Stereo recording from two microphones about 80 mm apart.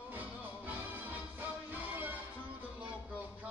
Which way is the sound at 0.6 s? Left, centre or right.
Right.